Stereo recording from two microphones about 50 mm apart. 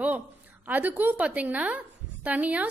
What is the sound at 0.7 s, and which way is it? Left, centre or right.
A woman's voice, right.